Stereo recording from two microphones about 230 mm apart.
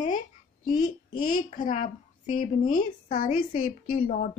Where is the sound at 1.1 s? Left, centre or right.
Left.